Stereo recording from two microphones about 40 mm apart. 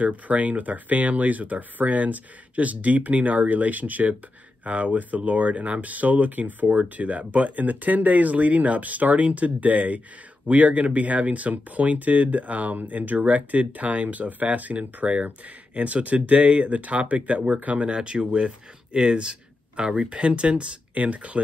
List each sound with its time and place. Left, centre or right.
0.0 s speech: right
17.8 s speech: right